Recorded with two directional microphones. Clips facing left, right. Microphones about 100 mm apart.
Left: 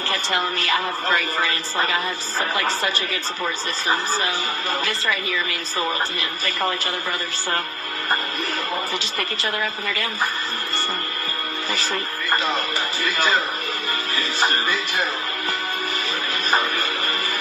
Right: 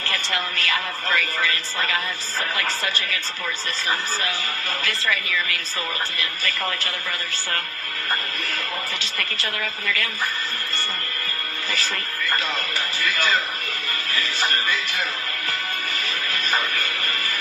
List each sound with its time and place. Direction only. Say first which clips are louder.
0.1 s a woman's voice: left 4 dB; 25° left (ahead or behind)
4.8 s a woman's voice: left 1 dB; 25° left (ahead or behind)
9.4 s a woman's voice: left 4 dB; 25° left (ahead or behind)
11.7 s speech: left 2 dB; 25° left (ahead or behind)
14.1 s music: left 2 dB; 30° left (ahead or behind)
16.4 s music: left 4 dB; 30° left (ahead or behind)